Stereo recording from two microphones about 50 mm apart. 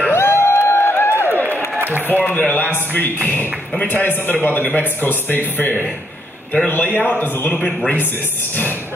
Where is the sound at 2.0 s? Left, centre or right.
Left.